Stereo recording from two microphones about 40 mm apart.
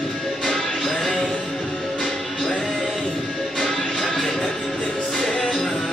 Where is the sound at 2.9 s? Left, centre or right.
Centre.